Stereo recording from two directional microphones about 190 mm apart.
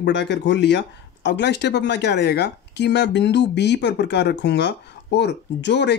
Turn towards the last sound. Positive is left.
turn(degrees=65)  # may be behind; listen again after turning